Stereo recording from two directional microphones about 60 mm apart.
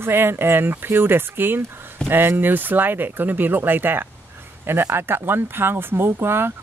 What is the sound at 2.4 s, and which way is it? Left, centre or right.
Speech, right.